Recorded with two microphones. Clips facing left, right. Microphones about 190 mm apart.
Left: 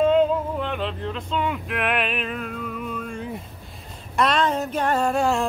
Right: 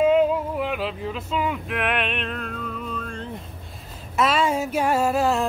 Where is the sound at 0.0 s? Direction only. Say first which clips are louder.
Even; 5° right (ahead or behind); by 3.3 s 10° left (ahead or behind).